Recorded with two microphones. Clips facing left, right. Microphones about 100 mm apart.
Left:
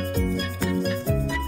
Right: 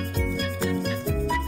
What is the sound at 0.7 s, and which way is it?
Music, centre (ahead or behind).